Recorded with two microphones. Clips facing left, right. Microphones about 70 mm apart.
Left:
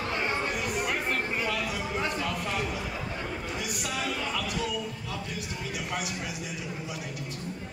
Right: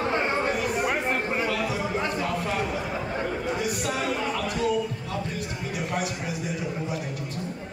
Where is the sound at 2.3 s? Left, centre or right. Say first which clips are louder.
Right 4 dB; right.